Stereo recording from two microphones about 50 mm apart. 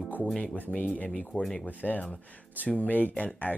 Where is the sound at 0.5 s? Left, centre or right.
Left.